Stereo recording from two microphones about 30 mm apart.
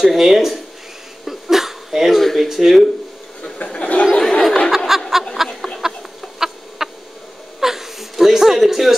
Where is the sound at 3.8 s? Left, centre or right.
Left.